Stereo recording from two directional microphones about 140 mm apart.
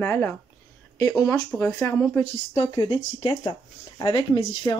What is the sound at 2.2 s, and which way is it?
Speech, 35° left (ahead or behind).